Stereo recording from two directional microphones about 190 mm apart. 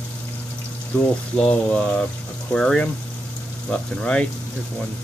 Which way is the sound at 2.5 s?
5° left (ahead or behind).